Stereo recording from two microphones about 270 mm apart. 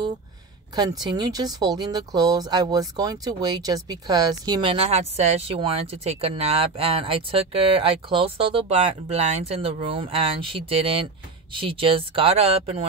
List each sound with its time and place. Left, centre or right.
0.7 s speech: centre